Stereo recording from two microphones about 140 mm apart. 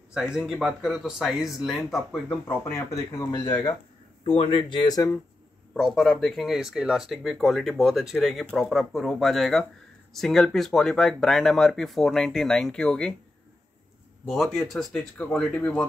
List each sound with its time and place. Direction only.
0.1 s speech: 5° right (ahead or behind)
2.2 s speech: 15° left (ahead or behind)
4.2 s speech: 40° left (ahead or behind)
5.8 s speech: 5° left (ahead or behind)
14.2 s speech: centre (ahead or behind)